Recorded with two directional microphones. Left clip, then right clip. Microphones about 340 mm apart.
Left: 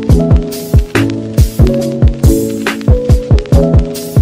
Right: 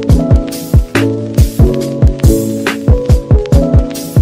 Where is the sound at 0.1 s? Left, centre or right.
Centre.